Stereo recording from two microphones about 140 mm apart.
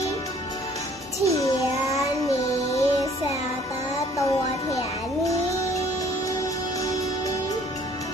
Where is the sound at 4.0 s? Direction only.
25° left (ahead or behind).